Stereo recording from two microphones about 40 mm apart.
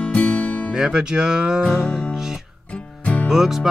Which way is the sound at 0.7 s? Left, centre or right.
Right.